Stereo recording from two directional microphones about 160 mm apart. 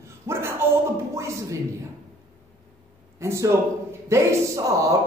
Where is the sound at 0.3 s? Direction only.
15° right (ahead or behind).